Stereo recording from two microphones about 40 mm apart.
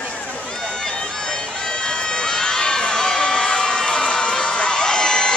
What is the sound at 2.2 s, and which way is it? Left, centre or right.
Crowd, centre.